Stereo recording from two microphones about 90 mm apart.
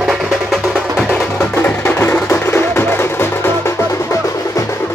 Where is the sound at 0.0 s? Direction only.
Centre (ahead or behind).